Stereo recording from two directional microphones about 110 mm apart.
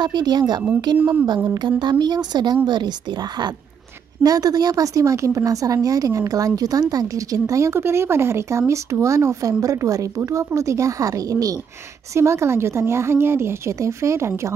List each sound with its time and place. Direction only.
0.0 s a woman's voice: 40° right (ahead or behind)
0.9 s speech: 15° right (ahead or behind)
1.8 s a woman's voice: 40° right (ahead or behind); by 14.5 s 25° right (ahead or behind)